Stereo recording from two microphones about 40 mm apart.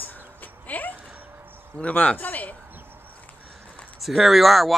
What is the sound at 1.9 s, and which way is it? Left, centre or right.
Speech, left.